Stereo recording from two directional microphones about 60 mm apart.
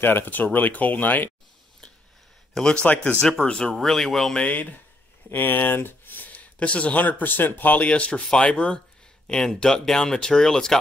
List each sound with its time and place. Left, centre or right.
0.0 s speech: left
2.5 s speech: centre
3.2 s speech: centre
4.5 s speech: left